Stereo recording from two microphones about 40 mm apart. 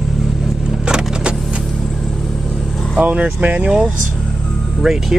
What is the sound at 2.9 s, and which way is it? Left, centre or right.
Speech, right.